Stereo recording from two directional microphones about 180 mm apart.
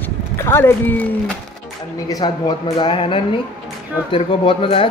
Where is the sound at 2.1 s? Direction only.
20° left (ahead or behind).